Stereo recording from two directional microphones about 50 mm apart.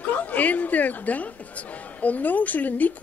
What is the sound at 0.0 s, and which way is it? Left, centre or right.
Speech, left.